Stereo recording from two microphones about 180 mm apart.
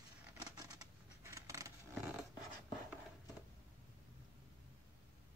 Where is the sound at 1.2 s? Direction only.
15° right (ahead or behind).